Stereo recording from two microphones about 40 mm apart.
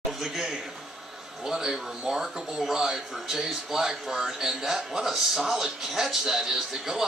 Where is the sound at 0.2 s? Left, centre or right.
Centre.